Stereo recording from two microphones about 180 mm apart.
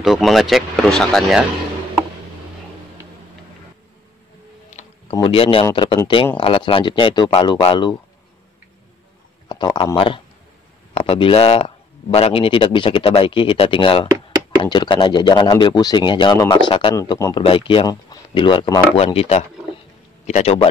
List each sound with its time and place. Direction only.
0.0 s speech: centre (ahead or behind)
5.1 s speech: 30° left (ahead or behind)
9.5 s speech: 25° left (ahead or behind)